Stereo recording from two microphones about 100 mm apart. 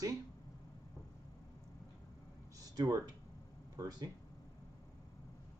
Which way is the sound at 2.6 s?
35° right (ahead or behind).